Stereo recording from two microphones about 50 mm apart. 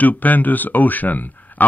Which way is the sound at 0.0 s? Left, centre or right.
Left.